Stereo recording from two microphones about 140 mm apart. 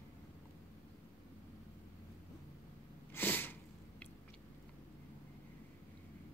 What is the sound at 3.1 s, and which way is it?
Sneeze, 15° left (ahead or behind).